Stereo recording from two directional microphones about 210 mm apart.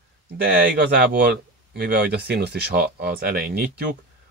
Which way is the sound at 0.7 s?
50° right (ahead or behind).